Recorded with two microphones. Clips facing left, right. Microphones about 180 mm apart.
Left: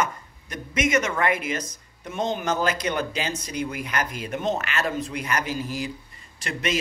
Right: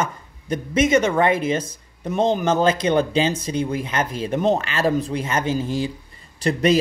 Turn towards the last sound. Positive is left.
turn(degrees=-35)  # may be behind; listen again after turning